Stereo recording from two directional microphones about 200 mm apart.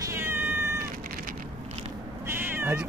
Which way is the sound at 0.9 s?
45° right (ahead or behind).